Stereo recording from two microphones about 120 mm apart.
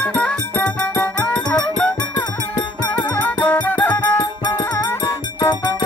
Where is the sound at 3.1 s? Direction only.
15° left (ahead or behind).